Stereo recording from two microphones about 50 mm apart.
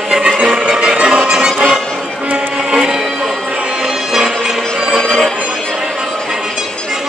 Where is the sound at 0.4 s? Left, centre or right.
Centre.